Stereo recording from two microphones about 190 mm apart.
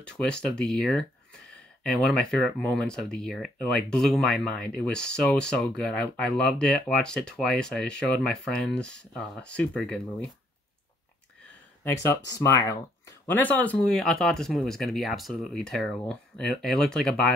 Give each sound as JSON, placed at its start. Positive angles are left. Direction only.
{"t": 0.0, "sound": "speech", "side_deg": 5}
{"t": 11.8, "sound": "speech", "side_deg": 15}